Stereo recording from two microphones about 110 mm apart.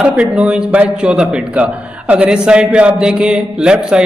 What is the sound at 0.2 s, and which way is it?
A man's voice, 10° right (ahead or behind).